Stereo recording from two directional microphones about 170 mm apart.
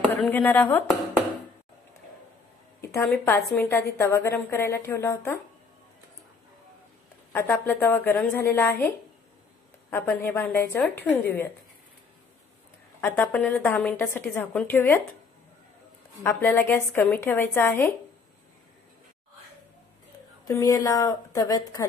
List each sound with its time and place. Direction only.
0.0 s speech: 10° left (ahead or behind)
3.3 s a woman's voice: 15° left (ahead or behind)
7.3 s a woman's voice: 10° left (ahead or behind)
9.8 s a woman's voice: 15° left (ahead or behind)
13.0 s a woman's voice: 10° left (ahead or behind)
16.2 s a woman's voice: 10° left (ahead or behind)
20.4 s a woman's voice: 20° left (ahead or behind)